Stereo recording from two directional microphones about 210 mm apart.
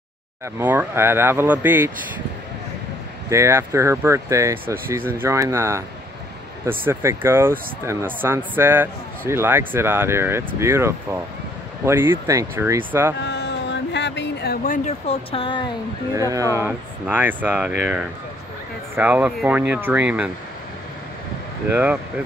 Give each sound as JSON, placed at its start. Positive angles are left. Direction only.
{"t": 0.6, "sound": "speech", "side_deg": -10}
{"t": 3.3, "sound": "speech", "side_deg": -15}
{"t": 13.2, "sound": "a sound", "side_deg": 55}
{"t": 16.2, "sound": "speech", "side_deg": -15}
{"t": 18.9, "sound": "speech", "side_deg": -5}
{"t": 21.6, "sound": "speech", "side_deg": -10}